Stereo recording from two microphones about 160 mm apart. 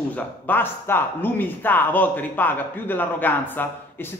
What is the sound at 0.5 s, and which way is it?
A man's voice, 15° left (ahead or behind).